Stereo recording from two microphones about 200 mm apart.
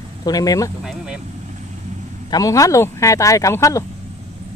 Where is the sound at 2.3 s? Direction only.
15° left (ahead or behind).